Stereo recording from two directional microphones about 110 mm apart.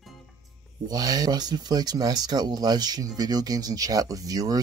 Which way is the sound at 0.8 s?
35° right (ahead or behind).